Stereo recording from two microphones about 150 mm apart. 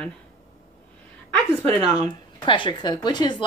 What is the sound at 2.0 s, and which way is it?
Speech, 35° left (ahead or behind).